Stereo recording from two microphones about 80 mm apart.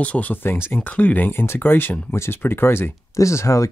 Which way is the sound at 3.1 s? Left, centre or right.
Left.